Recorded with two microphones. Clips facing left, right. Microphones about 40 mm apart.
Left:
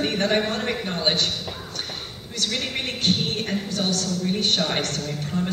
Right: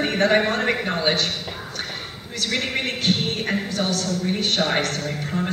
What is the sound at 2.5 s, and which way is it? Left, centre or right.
Speech, right.